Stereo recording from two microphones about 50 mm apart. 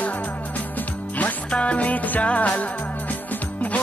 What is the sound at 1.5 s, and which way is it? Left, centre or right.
Music, left.